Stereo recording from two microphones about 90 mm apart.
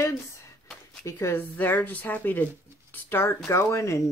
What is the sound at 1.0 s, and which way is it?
Speech, 25° left (ahead or behind).